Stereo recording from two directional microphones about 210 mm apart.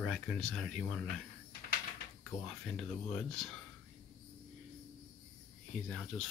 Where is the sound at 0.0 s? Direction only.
Centre (ahead or behind).